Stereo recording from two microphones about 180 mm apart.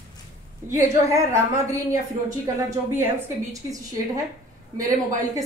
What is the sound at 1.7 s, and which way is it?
A woman's voice, 15° right (ahead or behind).